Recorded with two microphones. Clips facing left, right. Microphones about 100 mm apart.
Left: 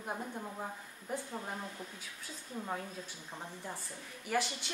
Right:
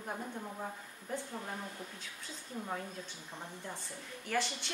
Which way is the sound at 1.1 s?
15° left (ahead or behind).